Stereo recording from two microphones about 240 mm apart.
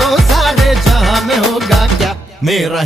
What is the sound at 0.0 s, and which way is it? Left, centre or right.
Music, centre.